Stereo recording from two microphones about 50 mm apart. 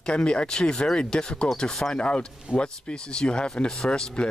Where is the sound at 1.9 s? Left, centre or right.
Left.